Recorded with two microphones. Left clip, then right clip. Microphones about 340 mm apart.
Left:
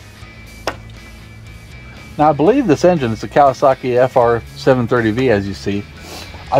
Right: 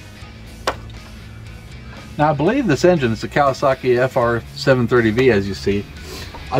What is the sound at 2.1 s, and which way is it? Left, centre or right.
Speech, centre.